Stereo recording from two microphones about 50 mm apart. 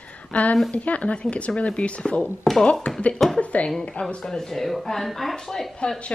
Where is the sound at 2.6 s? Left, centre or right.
Left; by 5.7 s centre.